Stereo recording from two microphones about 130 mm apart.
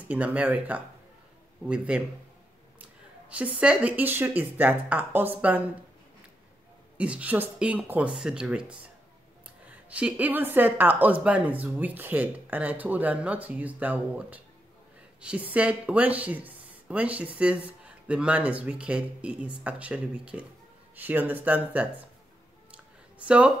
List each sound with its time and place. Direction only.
0.1 s speech: 10° right (ahead or behind)
3.3 s speech: 10° right (ahead or behind)
7.0 s speech: 10° right (ahead or behind)
22.7 s a sound: 10° right (ahead or behind)